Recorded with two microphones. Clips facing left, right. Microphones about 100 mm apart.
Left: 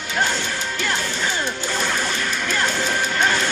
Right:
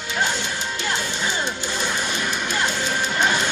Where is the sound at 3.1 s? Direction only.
15° right (ahead or behind).